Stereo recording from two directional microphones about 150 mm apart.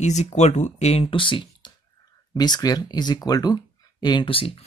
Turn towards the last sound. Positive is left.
turn(degrees=40)  # may be behind; listen again after turning